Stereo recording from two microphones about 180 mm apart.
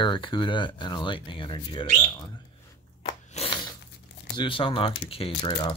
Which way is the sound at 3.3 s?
30° left (ahead or behind).